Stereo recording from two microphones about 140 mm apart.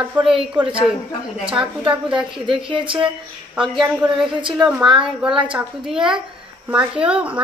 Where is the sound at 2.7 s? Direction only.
35° right (ahead or behind).